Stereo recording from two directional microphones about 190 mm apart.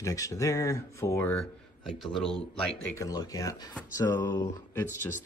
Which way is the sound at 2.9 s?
20° left (ahead or behind).